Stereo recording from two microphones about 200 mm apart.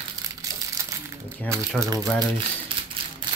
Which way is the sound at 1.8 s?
20° right (ahead or behind).